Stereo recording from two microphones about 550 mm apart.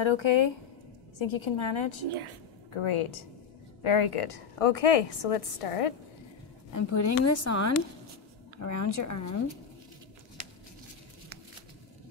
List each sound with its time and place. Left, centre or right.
0.0 s a woman's voice: left
6.7 s a woman's voice: left